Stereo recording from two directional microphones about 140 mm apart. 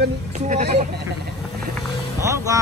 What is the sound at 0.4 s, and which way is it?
Speech, 55° right (ahead or behind).